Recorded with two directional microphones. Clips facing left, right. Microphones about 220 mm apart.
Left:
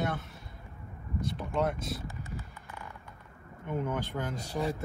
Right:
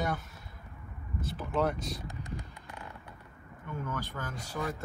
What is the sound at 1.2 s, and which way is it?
Speech, centre (ahead or behind).